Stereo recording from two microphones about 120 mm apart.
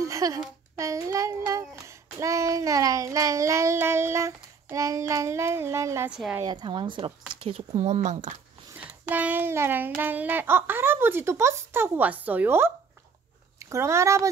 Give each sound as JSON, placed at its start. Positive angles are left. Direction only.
{"t": 0.0, "sound": "a sound", "side_deg": -30}
{"t": 6.0, "sound": "a woman's voice", "side_deg": -5}
{"t": 6.4, "sound": "a woman's voice", "side_deg": -40}
{"t": 8.7, "sound": "a child's voice", "side_deg": -15}